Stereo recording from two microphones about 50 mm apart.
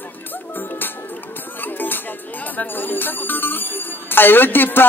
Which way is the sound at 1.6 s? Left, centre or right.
Left.